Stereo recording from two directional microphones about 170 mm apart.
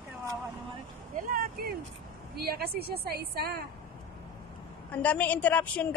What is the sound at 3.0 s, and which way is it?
Speech, 65° right (ahead or behind).